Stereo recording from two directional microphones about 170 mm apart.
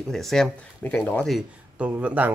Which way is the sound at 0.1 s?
Centre (ahead or behind).